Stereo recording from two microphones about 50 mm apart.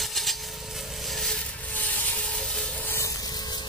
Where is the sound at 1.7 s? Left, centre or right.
Left.